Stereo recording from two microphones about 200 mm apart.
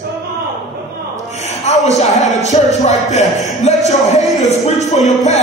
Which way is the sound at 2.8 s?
35° left (ahead or behind).